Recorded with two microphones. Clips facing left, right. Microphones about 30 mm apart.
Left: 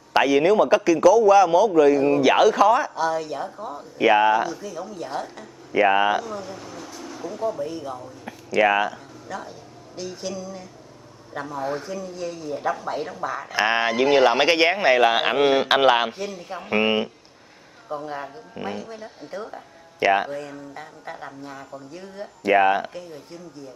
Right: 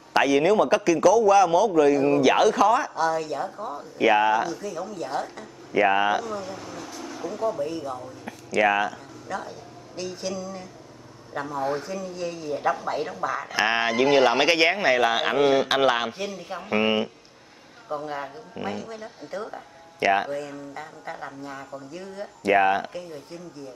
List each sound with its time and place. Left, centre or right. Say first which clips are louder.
0.1 s a man's voice: left 2 dB; centre
4.0 s a man's voice: left 2 dB; centre
9.3 s a woman's voice: right 2 dB; centre; by 16.1 s left
16.3 s a man's voice: left 1 dB; centre
17.8 s a woman's voice: even; centre